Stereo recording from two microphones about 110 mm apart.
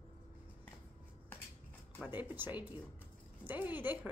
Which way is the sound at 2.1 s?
15° right (ahead or behind).